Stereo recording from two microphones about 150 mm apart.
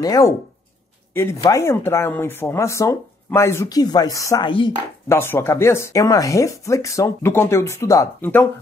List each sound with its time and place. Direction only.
0.0 s speech: 25° left (ahead or behind)
4.5 s speech: 35° left (ahead or behind)
5.0 s speech: 15° left (ahead or behind)